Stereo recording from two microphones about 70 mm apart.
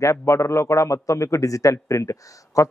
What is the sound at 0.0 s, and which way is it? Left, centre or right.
A man's voice, left.